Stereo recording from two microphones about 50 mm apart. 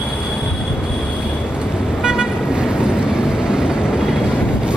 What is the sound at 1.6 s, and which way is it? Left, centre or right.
Vehicle, centre.